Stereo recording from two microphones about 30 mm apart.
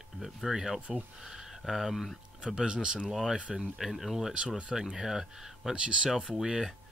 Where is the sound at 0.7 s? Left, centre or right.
Right.